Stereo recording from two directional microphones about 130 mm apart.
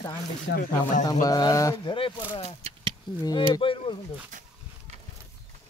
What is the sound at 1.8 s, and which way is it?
Speech, 40° left (ahead or behind).